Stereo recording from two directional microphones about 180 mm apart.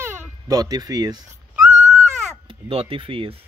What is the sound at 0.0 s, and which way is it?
A child's voice, 15° right (ahead or behind).